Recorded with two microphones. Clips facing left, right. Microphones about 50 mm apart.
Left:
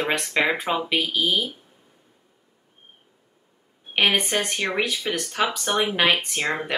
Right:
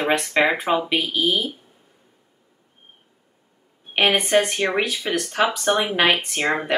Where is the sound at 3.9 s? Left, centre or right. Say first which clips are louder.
Right 4 dB; centre.